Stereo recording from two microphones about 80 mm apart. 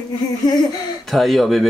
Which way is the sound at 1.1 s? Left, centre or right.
Centre.